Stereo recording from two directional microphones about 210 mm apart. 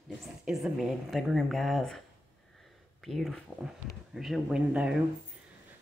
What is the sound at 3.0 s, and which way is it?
Speech, centre (ahead or behind).